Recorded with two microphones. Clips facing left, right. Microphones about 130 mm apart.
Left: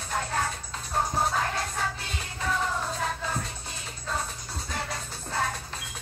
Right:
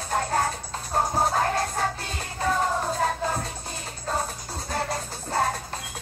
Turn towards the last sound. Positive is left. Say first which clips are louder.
# right 5 dB
turn(degrees=-40)  # may be behind; listen again after turning